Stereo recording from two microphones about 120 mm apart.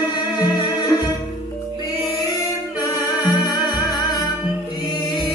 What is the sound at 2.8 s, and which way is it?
Music, 35° left (ahead or behind).